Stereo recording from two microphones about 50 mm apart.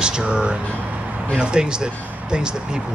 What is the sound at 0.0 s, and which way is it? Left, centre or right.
Speech, centre.